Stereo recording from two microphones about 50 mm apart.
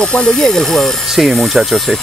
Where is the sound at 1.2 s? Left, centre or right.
Centre.